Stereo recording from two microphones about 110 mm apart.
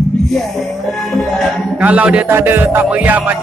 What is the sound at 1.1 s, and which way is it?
Music, centre (ahead or behind).